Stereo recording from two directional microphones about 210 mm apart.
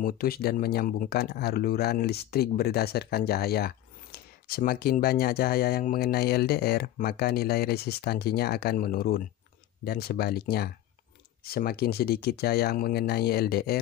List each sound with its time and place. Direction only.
0.0 s speech: 45° left (ahead or behind)